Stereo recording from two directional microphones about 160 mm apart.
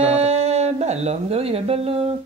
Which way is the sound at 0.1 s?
40° right (ahead or behind).